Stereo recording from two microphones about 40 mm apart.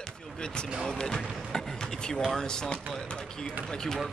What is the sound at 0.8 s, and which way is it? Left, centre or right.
Speech, centre.